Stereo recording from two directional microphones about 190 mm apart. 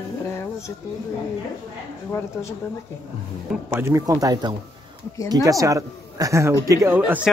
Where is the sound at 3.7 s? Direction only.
15° right (ahead or behind).